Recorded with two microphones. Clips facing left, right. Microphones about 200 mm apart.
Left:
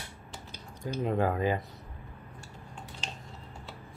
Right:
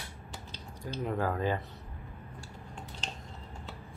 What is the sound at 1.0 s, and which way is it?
Speech, 20° left (ahead or behind).